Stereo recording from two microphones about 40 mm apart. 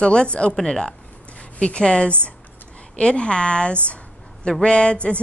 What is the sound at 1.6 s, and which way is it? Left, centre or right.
A woman's voice, left.